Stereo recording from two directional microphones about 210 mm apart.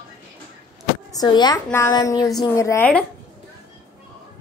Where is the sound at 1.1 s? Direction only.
20° left (ahead or behind).